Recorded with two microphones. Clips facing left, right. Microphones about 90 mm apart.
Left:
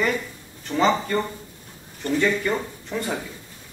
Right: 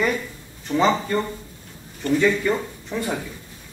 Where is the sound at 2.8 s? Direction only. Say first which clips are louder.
Right 1 dB; 10° right (ahead or behind).